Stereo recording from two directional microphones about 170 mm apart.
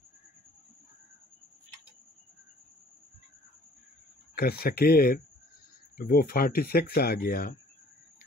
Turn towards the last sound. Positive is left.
turn(degrees=60)  # may be behind; listen again after turning